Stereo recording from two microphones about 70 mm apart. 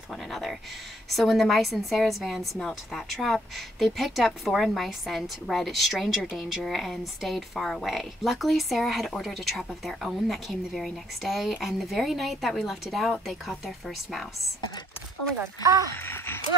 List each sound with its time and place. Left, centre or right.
0.3 s a woman's voice: centre
15.9 s speech: left